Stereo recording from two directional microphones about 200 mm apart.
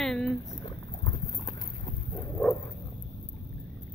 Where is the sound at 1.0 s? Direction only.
25° left (ahead or behind).